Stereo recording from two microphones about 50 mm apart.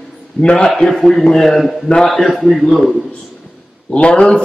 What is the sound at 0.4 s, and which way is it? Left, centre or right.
A man's voice, centre.